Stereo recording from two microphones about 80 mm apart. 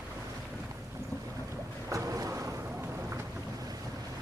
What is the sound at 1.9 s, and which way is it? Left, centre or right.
Boat, right.